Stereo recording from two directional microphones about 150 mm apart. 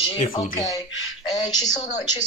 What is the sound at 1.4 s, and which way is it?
Speech, 50° left (ahead or behind).